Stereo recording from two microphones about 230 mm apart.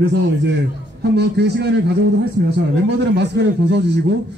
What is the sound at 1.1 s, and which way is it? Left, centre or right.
Speech, right.